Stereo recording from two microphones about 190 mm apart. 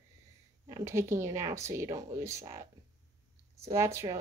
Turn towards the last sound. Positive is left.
turn(degrees=-15)  # may be behind; listen again after turning